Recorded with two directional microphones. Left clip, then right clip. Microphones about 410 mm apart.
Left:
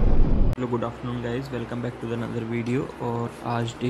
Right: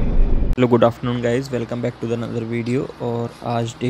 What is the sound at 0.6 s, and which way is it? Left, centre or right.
Speech, centre.